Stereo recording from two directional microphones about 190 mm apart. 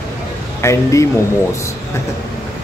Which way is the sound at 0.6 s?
15° left (ahead or behind).